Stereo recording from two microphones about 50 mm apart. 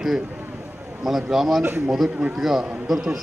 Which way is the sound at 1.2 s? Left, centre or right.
Centre.